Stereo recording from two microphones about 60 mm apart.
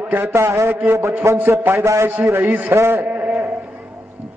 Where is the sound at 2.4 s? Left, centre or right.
Right.